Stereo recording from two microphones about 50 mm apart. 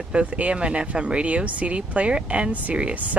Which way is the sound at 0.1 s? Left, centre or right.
Right.